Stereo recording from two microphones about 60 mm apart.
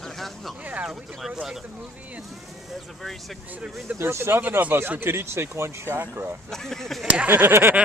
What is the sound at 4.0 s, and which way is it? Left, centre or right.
Speech, right.